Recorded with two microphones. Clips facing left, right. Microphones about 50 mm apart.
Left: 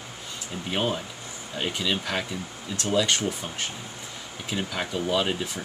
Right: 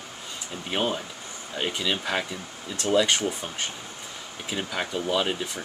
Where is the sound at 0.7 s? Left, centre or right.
Centre.